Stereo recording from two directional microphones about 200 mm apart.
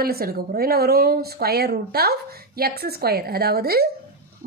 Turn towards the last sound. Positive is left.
turn(degrees=-50)  # may be behind; listen again after turning